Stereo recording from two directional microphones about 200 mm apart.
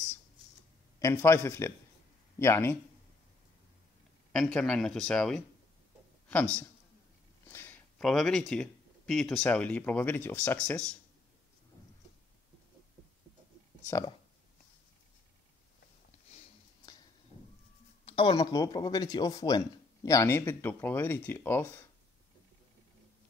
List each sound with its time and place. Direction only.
0.9 s speech: 15° left (ahead or behind)
4.3 s speech: 5° left (ahead or behind)
13.8 s speech: 15° left (ahead or behind)
18.0 s speech: 25° left (ahead or behind); by 21.7 s 10° left (ahead or behind)